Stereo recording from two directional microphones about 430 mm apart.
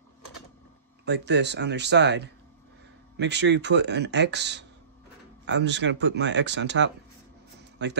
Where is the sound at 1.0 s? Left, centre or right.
Right.